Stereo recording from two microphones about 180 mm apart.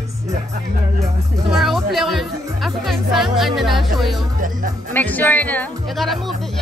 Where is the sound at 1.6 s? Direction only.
Centre (ahead or behind).